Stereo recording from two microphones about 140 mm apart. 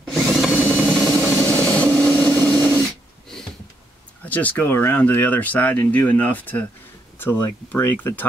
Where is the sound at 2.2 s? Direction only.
25° right (ahead or behind).